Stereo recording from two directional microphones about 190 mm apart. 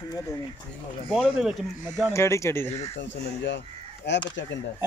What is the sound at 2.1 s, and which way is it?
Speech, 15° left (ahead or behind).